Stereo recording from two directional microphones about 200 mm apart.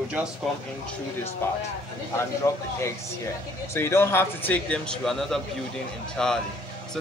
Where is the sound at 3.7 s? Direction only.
10° left (ahead or behind).